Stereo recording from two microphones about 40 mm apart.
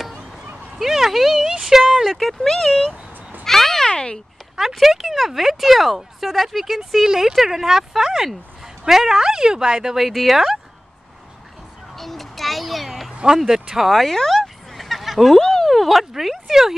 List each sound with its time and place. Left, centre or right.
0.7 s a sound: centre
2.1 s speech: centre
3.4 s cat: centre
3.9 s speech: left
4.7 s speech: centre
10.0 s speech: centre
12.0 s a sound: centre
13.7 s fowl: centre
15.3 s a sound: centre
15.7 s speech: centre